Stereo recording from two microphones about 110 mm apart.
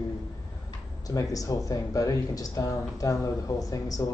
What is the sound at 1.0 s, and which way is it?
Speech, 30° left (ahead or behind).